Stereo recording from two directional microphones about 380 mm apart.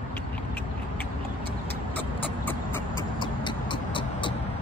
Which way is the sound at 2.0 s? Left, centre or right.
Centre.